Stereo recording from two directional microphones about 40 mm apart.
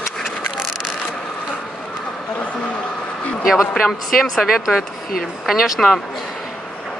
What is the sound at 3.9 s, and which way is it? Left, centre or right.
Speech, centre.